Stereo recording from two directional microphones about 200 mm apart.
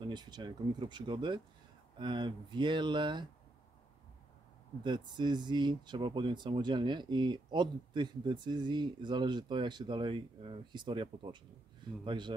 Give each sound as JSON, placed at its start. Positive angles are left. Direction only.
{"t": 0.0, "sound": "speech", "side_deg": -20}
{"t": 4.8, "sound": "speech", "side_deg": -20}